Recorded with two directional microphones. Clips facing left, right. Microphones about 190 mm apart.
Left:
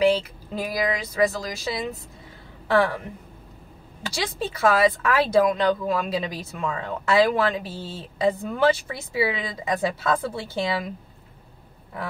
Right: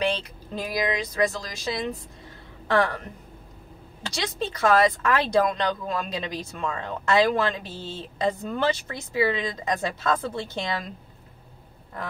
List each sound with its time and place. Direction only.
0.0 s speech: 5° left (ahead or behind)
4.1 s speech: 10° left (ahead or behind)